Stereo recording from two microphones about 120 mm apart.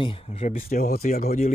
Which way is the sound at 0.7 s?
90° left.